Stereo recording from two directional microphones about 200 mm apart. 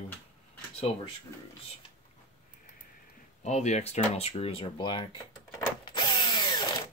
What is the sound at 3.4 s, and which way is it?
Speech, 35° left (ahead or behind).